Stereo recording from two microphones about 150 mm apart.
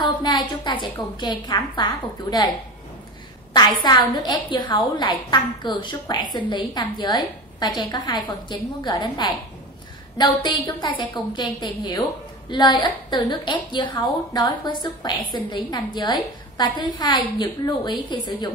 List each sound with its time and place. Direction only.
0.0 s a woman's voice: 30° left (ahead or behind)
3.8 s a woman's voice: 30° left (ahead or behind)